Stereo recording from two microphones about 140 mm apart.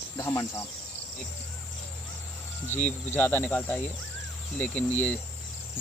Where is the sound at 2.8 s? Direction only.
15° left (ahead or behind).